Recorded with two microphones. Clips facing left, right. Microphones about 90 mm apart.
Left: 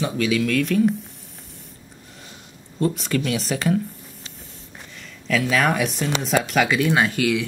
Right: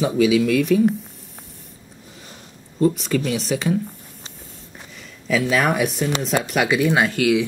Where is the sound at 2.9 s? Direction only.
Centre (ahead or behind).